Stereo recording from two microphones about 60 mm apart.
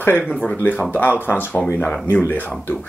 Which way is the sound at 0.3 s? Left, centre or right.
Centre.